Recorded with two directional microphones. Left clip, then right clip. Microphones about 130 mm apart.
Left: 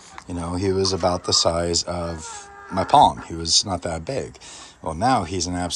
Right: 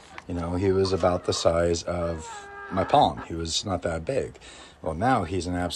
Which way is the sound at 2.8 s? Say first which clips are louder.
Left 6 dB; 20° left (ahead or behind).